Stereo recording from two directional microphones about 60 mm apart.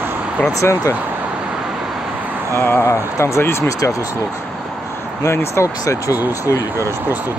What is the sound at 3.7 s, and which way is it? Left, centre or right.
Speech, left.